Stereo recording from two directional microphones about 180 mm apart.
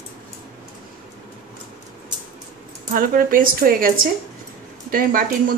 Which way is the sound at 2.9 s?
50° right (ahead or behind).